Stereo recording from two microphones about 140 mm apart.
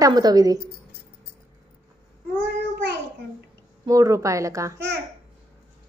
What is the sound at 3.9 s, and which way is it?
Speech, 25° right (ahead or behind).